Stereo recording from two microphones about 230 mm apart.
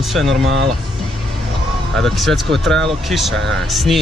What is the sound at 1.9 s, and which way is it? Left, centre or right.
Speech, centre.